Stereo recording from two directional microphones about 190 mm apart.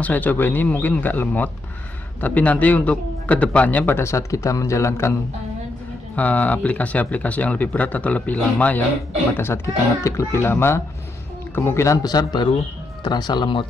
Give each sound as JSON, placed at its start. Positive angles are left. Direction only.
{"t": 0.0, "sound": "a man's voice", "side_deg": 10}
{"t": 6.1, "sound": "a man's voice", "side_deg": 10}